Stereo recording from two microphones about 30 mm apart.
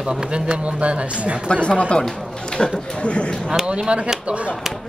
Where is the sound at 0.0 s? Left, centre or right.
Right.